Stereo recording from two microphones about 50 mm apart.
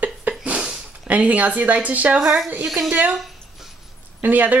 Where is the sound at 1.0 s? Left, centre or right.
Right.